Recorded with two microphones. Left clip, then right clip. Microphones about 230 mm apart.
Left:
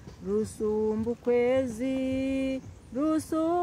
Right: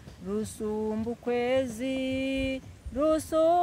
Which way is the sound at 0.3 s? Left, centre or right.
Right.